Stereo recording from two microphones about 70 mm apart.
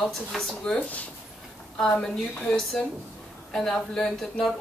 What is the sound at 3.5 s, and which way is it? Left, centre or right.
Speech, centre.